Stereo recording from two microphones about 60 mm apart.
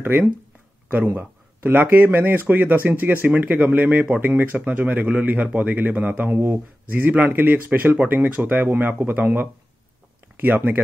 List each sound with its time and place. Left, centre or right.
1.1 s speech: right